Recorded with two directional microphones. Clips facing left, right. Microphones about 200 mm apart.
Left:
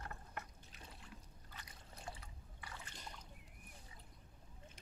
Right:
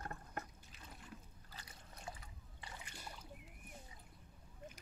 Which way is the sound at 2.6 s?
15° right (ahead or behind).